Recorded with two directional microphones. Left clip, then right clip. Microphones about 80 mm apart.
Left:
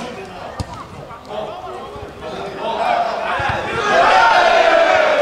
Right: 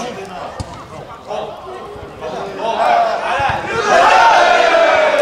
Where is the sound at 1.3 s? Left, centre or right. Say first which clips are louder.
Right 3 dB; right.